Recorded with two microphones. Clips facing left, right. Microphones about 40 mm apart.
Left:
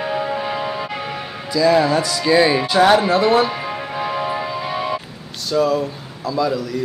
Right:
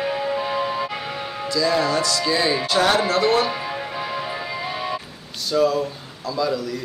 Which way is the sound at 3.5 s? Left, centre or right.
Centre.